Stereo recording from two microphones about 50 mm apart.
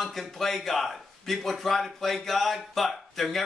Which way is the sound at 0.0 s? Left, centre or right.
Centre.